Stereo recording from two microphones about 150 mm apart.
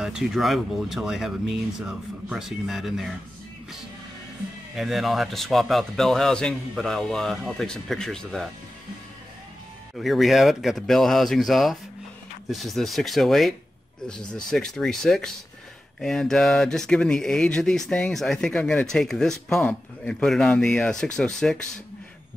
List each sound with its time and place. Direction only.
0.0 s speech: 5° right (ahead or behind)
4.7 s speech: centre (ahead or behind)
9.9 s speech: centre (ahead or behind)